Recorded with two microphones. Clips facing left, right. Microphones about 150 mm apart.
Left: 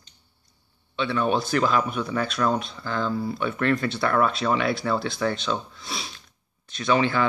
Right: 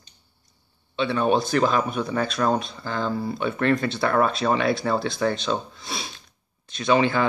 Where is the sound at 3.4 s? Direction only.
25° right (ahead or behind).